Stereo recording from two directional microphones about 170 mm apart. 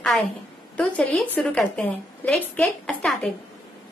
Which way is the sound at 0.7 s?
10° left (ahead or behind).